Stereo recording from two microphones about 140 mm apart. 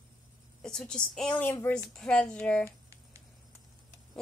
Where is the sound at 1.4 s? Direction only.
15° left (ahead or behind).